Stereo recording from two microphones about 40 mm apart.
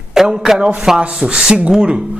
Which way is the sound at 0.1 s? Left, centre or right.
Centre.